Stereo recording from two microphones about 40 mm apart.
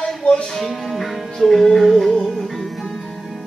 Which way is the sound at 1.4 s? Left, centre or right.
Centre.